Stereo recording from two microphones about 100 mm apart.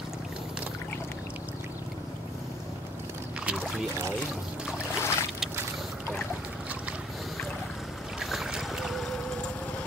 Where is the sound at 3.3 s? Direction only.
10° right (ahead or behind).